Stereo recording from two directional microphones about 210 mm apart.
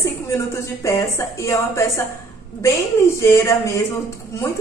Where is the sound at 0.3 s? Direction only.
15° left (ahead or behind).